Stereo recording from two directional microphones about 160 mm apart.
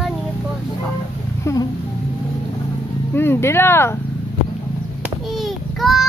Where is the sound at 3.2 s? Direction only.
15° left (ahead or behind).